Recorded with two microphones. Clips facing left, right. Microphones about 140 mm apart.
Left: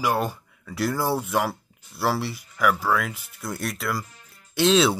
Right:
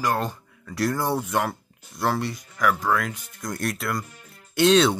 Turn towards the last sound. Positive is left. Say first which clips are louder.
# right 1 dB
turn(degrees=0)  # may be behind; listen again after turning